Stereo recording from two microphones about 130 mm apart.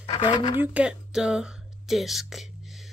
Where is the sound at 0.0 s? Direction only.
55° left (ahead or behind).